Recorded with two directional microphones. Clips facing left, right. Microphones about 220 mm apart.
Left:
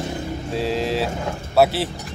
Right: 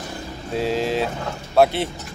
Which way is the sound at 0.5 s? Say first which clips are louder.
Right 1 dB; centre (ahead or behind).